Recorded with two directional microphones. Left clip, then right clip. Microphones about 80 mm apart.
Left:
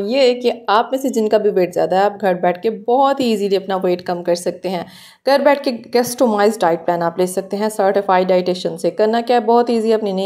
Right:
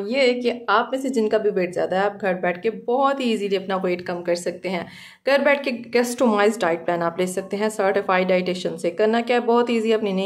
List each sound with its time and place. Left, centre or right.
0.0 s a woman's voice: left
5.2 s a woman's voice: left
5.9 s a woman's voice: centre
6.3 s a woman's voice: left